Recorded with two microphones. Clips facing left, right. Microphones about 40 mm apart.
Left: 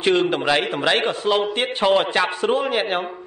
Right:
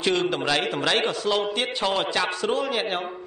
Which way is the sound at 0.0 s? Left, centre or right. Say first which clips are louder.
Left 5 dB; left.